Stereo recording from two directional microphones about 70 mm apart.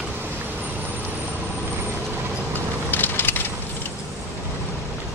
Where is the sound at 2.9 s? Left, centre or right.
Left.